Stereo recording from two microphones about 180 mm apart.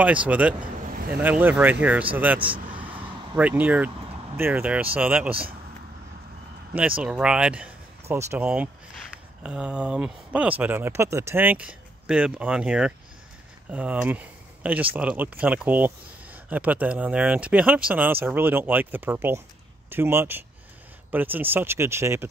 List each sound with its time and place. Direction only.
0.0 s speech: 10° right (ahead or behind)
2.4 s vehicle: 30° right (ahead or behind)
3.3 s speech: 10° right (ahead or behind)
7.0 s speech: 5° right (ahead or behind)